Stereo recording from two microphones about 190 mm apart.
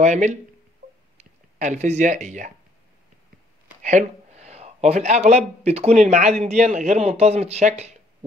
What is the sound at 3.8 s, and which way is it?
Speech, 35° right (ahead or behind).